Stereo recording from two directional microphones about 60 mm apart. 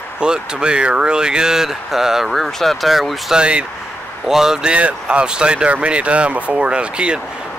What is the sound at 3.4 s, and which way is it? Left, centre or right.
Speech, centre.